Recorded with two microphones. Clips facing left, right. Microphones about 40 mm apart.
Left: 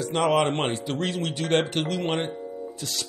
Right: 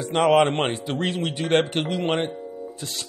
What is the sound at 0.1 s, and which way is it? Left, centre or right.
Speech, right.